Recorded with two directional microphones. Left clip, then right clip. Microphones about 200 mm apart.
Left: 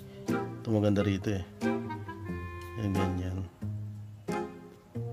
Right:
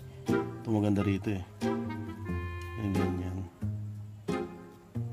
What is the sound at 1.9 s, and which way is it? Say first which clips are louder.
Music: even; 5° right (ahead or behind).